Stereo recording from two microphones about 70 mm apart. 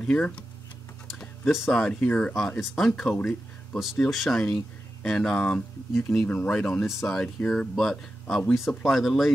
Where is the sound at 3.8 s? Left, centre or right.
Centre.